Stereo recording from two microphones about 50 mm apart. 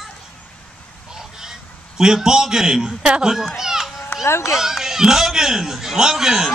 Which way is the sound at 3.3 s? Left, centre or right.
Centre.